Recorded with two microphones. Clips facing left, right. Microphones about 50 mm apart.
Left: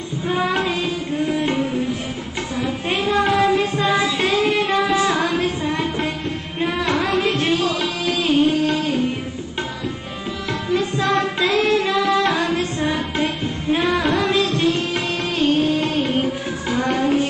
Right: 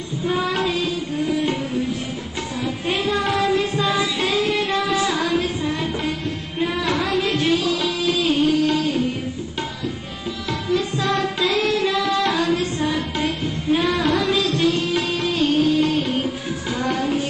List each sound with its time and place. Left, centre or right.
0.3 s child singing: centre
1.4 s music: centre
11.1 s music: centre